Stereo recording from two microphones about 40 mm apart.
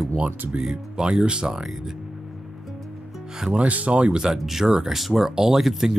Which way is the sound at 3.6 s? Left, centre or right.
Right.